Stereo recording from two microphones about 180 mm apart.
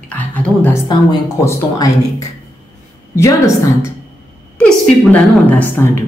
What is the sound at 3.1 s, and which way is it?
Speech, 15° left (ahead or behind).